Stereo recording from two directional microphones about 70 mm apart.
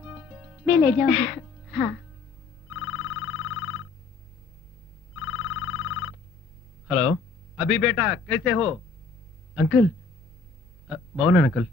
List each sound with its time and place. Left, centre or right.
0.0 s music: right
2.7 s telephone bell ringing: right
5.1 s telephone bell ringing: right
6.9 s a man's voice: centre
10.9 s speech: centre